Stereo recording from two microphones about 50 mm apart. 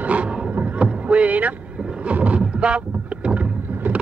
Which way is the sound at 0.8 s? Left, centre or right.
Right.